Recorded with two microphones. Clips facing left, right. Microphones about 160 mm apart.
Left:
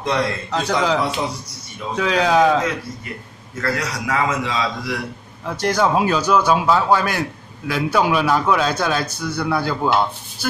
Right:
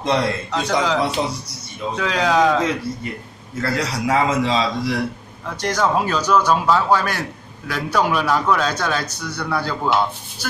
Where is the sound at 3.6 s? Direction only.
30° right (ahead or behind).